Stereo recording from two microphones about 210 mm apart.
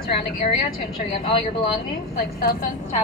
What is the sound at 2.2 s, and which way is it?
Speech, 45° left (ahead or behind).